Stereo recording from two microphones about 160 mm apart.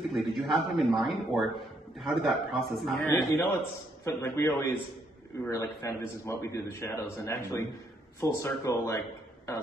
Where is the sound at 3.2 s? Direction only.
20° left (ahead or behind).